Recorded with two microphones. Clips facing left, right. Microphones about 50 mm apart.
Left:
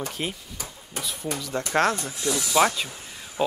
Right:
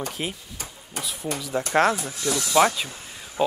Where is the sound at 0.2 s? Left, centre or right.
Centre.